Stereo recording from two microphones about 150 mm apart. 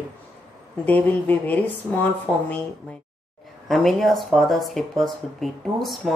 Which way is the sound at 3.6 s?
Centre (ahead or behind).